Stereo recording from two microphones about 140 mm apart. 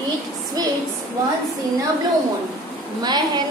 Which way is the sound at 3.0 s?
30° right (ahead or behind).